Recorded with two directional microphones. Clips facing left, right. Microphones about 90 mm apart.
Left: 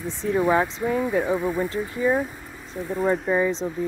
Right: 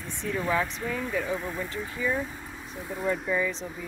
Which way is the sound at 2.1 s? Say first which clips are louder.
Left 6 dB; centre (ahead or behind).